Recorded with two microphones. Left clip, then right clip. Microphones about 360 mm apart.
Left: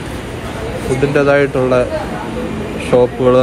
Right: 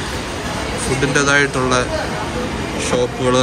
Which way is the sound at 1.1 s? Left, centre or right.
Centre.